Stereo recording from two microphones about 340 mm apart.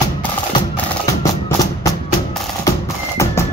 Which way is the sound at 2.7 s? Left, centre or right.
Centre.